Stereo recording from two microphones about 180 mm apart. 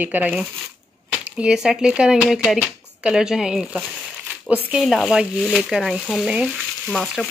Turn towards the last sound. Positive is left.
turn(degrees=0)  # may be behind; listen again after turning